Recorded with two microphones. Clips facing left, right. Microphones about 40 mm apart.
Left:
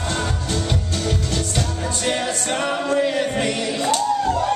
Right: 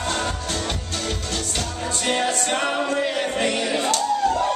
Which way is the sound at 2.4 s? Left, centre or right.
Centre.